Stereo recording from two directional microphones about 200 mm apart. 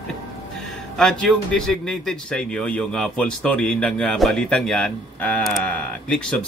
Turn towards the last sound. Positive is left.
turn(degrees=5)  # may be behind; listen again after turning